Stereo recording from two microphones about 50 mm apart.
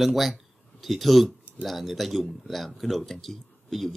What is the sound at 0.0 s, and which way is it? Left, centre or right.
Speech, centre.